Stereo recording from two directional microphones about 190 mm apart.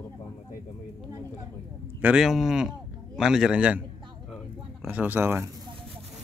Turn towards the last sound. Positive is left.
turn(degrees=-10)  # may be behind; listen again after turning